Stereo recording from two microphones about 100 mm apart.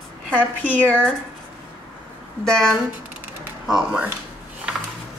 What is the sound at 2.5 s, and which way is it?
Speech, 5° left (ahead or behind).